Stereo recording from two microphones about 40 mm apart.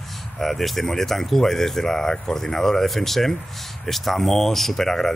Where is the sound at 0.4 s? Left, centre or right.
Centre.